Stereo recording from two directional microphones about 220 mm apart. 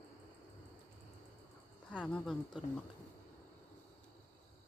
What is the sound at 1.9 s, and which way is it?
Speech, 5° left (ahead or behind).